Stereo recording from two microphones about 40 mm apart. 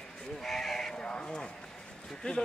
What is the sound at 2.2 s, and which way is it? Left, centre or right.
Speech, left.